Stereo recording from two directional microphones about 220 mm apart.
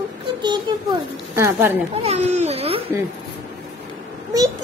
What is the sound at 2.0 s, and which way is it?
Speech, 30° right (ahead or behind).